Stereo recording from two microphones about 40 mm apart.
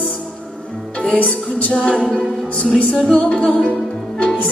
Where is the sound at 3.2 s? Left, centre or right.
Left.